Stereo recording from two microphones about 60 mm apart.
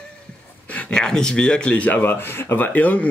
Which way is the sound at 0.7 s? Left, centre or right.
Centre.